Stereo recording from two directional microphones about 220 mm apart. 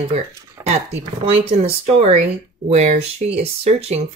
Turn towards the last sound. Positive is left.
turn(degrees=-30)  # may be behind; listen again after turning